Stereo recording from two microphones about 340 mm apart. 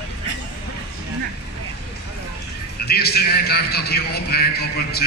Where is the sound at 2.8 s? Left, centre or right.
Left.